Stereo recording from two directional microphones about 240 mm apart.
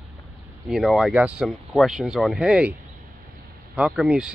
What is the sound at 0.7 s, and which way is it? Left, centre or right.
Speech, centre.